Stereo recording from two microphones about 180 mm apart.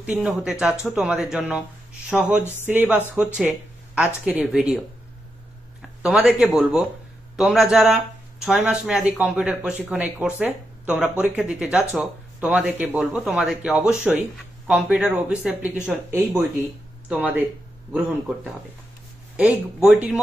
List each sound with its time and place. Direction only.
0.0 s speech: 5° right (ahead or behind)
5.8 s speech: centre (ahead or behind)
19.3 s speech: 5° right (ahead or behind)